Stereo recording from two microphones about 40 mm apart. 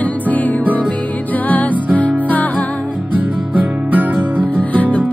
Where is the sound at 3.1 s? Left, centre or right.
Right.